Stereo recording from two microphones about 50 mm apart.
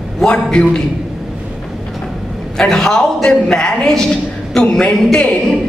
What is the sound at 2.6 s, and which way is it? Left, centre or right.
A man's voice, centre.